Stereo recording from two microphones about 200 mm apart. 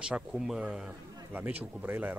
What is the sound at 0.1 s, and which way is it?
Speech, 5° right (ahead or behind).